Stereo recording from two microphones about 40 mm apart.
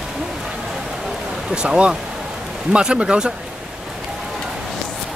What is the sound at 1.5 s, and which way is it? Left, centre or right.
Speech, right.